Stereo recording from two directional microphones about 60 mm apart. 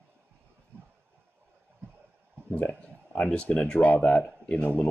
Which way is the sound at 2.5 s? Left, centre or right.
Left.